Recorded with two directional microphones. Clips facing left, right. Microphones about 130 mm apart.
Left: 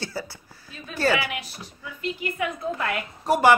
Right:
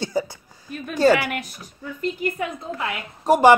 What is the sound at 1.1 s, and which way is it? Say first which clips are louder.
A woman's voice: right 5 dB; 45° right (ahead or behind).